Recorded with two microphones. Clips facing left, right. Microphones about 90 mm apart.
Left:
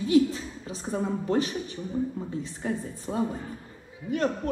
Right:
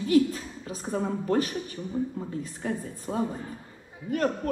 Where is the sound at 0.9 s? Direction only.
40° right (ahead or behind).